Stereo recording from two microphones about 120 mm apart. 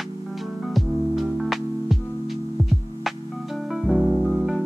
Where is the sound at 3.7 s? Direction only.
5° right (ahead or behind).